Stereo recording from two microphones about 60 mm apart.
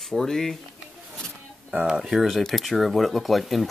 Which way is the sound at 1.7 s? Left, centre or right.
Right.